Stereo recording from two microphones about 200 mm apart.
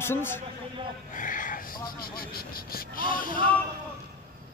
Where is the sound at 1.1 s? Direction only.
40° left (ahead or behind).